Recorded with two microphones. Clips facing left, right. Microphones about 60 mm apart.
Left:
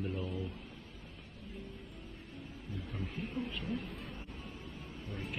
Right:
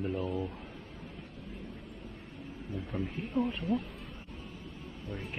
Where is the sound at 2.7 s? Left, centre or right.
Right.